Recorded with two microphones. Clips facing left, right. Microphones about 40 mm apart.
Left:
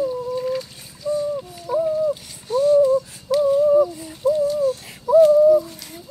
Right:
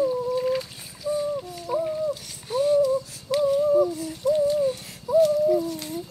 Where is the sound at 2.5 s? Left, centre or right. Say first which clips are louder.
Left 5 dB; centre.